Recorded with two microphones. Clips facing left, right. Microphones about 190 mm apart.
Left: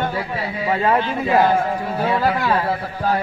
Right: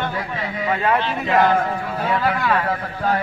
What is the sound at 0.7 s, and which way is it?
Speech, 30° left (ahead or behind).